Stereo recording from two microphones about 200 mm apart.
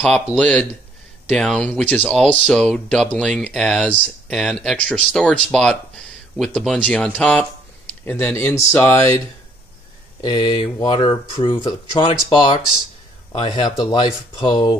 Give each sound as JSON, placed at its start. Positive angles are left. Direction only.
{"t": 0.0, "sound": "speech", "side_deg": 5}
{"t": 10.2, "sound": "speech", "side_deg": 20}